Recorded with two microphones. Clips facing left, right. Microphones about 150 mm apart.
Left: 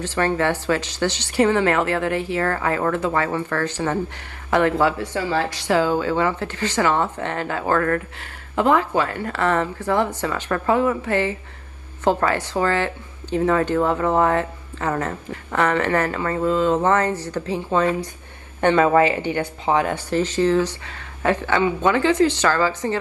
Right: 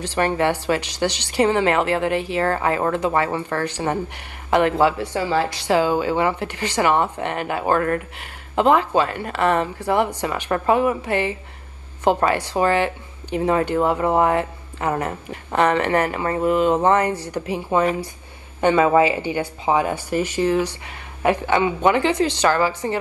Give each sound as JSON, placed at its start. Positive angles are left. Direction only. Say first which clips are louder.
{"t": 0.0, "sound": "speech", "louder": "right 1 dB", "side_deg": -15}